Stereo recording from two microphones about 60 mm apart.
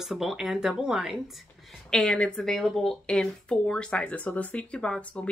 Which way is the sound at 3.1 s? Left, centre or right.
Centre.